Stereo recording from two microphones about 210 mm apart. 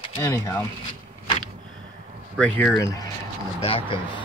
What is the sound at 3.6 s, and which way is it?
Speech, 25° left (ahead or behind).